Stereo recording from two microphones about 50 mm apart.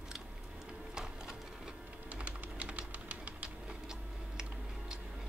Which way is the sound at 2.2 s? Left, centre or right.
Right.